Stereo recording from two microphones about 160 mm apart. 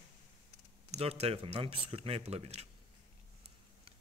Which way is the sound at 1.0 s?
40° right (ahead or behind).